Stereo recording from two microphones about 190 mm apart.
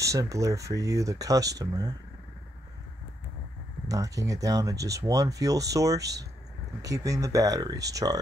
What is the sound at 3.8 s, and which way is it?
Speech, 20° right (ahead or behind).